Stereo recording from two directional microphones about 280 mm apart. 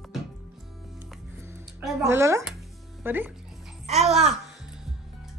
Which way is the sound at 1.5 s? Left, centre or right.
Centre.